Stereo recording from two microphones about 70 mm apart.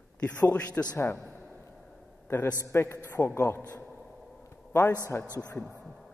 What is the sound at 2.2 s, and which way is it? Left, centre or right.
A man's voice, left.